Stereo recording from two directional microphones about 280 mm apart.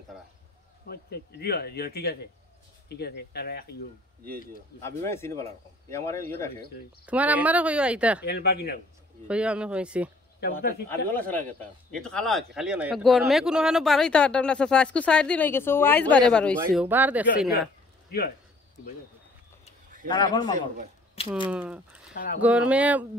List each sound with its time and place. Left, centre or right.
0.8 s speech: left
4.8 s speech: centre
7.1 s speech: centre
8.2 s speech: left
9.3 s speech: centre
11.1 s speech: centre
20.1 s speech: centre
20.5 s a man's voice: right
21.5 s speech: centre
22.1 s speech: left
22.4 s speech: centre